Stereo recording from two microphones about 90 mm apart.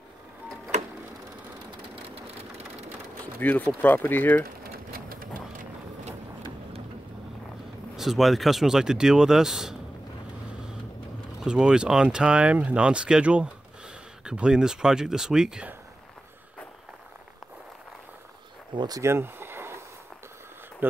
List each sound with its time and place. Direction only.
1.7 s vehicle: 80° right
3.3 s speech: 20° left (ahead or behind)
7.9 s speech: 5° right (ahead or behind)
11.4 s speech: 10° right (ahead or behind)
18.8 s speech: 45° right (ahead or behind)
19.0 s a sound: 25° right (ahead or behind)